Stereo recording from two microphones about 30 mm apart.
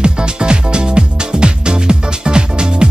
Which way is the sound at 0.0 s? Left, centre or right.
Right.